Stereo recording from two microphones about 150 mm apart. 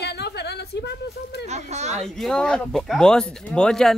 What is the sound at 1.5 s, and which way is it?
Speech, 50° right (ahead or behind).